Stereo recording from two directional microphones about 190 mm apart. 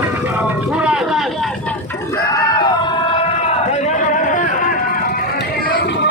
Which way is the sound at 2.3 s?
20° left (ahead or behind).